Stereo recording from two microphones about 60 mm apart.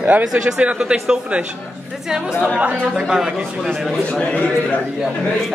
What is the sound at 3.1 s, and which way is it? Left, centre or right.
Speech, centre.